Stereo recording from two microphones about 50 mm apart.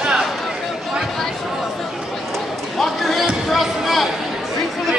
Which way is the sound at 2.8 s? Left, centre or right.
Centre.